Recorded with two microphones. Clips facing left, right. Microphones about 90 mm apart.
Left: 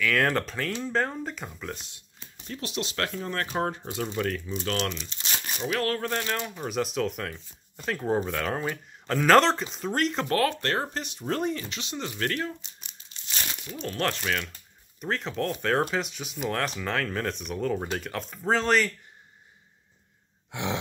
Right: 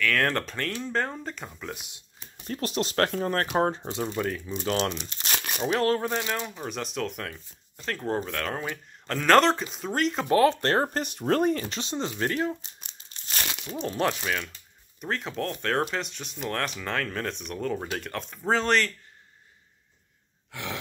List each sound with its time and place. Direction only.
0.0 s speech: 5° left (ahead or behind)
2.3 s speech: 45° right (ahead or behind)
3.5 s speech: 30° right (ahead or behind); by 4.7 s 10° right (ahead or behind)
5.2 s crumpling: 60° right (ahead or behind)
5.6 s speech: 30° right (ahead or behind)
6.0 s speech: 10° right (ahead or behind)
10.2 s speech: 20° right (ahead or behind)
10.6 s speech: 35° right (ahead or behind); by 12.5 s 20° right (ahead or behind)
13.1 s crumpling: 50° right (ahead or behind)
13.9 s speech: 10° right (ahead or behind)
20.5 s a sound: 20° left (ahead or behind)